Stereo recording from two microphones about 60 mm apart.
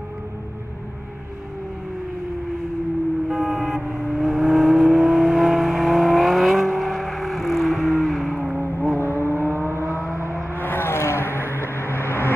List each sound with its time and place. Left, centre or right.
3.3 s vehicle: centre
8.9 s vehicle: left
9.2 s vehicle: right
10.6 s vehicle: left